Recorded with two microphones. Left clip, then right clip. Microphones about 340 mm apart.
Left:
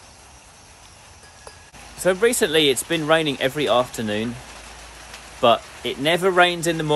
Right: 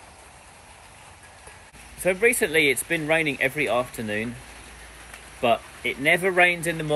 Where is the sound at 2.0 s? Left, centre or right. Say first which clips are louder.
Left 2 dB; centre.